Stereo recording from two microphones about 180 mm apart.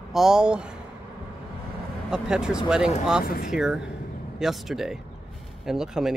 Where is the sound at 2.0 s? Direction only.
5° right (ahead or behind).